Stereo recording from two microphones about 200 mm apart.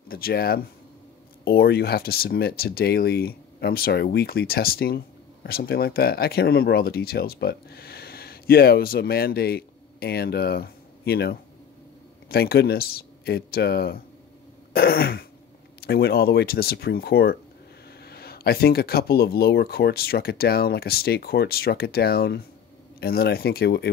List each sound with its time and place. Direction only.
0.1 s speech: 50° left (ahead or behind)